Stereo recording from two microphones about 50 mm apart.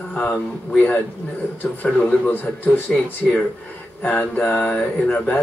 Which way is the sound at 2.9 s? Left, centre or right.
Left.